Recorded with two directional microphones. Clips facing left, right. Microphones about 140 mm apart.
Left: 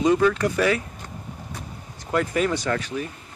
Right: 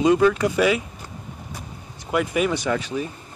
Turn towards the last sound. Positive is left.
turn(degrees=-20)  # may be behind; listen again after turning